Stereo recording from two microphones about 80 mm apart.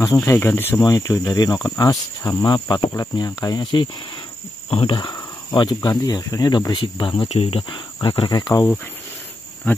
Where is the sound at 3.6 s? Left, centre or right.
Left.